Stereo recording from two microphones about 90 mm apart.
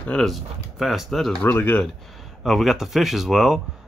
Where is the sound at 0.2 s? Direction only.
Centre (ahead or behind).